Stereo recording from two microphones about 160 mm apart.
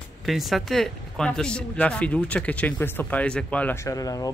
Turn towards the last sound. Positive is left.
turn(degrees=20)  # may be behind; listen again after turning